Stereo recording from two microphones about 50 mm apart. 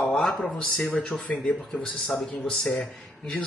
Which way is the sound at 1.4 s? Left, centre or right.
Centre.